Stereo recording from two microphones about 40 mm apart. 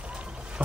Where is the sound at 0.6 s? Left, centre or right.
Right.